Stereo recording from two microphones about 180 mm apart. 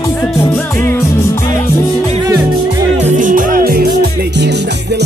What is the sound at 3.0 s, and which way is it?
Music, 45° right (ahead or behind).